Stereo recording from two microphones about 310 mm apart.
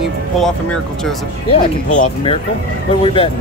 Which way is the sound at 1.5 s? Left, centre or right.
Left.